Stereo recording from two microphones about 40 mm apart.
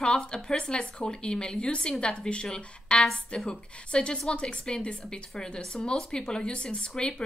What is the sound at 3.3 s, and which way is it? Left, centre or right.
A woman's voice, left.